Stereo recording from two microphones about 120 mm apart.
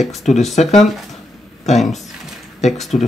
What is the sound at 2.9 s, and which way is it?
Speech, 80° left.